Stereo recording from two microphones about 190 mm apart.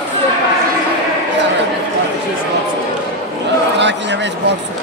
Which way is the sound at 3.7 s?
65° right (ahead or behind).